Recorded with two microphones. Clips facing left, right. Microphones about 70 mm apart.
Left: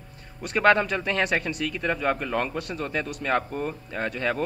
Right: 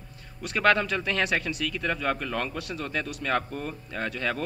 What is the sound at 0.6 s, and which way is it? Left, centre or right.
Speech, centre.